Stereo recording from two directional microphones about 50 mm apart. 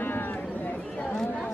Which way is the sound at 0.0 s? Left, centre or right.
Left.